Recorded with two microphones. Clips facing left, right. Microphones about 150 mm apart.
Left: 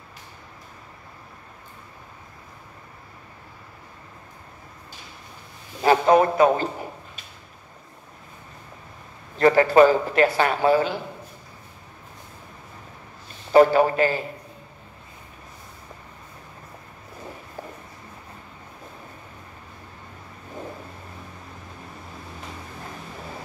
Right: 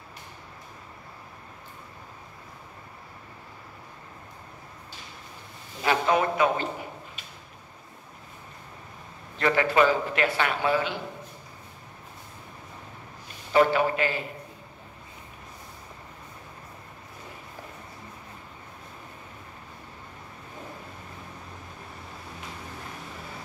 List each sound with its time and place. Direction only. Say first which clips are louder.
5.8 s a man's voice: left 7 dB; 40° left (ahead or behind)
9.4 s a man's voice: left 7 dB; 40° left (ahead or behind)
13.5 s a man's voice: left 6 dB; 40° left (ahead or behind)